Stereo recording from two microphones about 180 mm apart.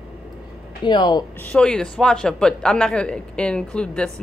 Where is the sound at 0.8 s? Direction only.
25° left (ahead or behind).